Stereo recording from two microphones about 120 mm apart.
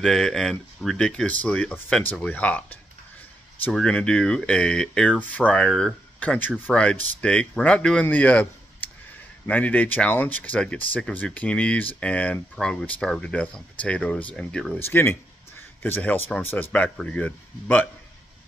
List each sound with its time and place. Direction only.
0.0 s speech: 5° left (ahead or behind)
14.8 s speech: 20° left (ahead or behind)